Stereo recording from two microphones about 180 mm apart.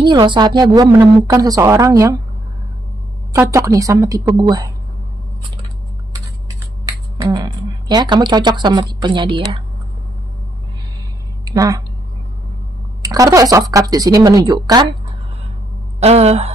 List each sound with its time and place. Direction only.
0.0 s a woman's voice: 25° right (ahead or behind)
3.3 s a woman's voice: 15° right (ahead or behind)
6.9 s speech: 20° right (ahead or behind)
11.4 s a woman's voice: 20° right (ahead or behind)
13.0 s a woman's voice: 20° right (ahead or behind)
16.0 s speech: 35° right (ahead or behind)